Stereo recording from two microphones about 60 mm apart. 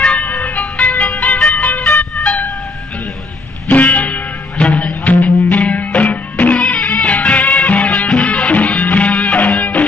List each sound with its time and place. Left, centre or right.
0.0 s music: left
3.6 s music: left